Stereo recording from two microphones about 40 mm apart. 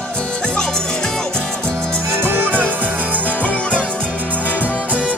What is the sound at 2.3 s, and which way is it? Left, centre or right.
Music, right.